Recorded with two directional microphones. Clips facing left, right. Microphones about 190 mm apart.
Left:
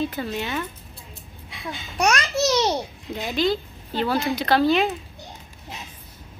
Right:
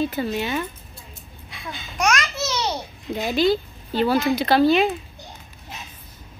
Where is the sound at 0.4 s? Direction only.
15° right (ahead or behind).